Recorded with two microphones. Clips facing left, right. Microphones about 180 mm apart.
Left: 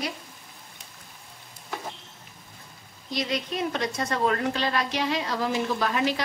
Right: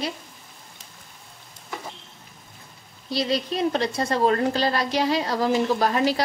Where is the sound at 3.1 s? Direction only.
30° right (ahead or behind).